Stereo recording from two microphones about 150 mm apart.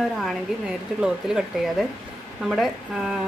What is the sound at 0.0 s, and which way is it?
A woman's voice, centre (ahead or behind).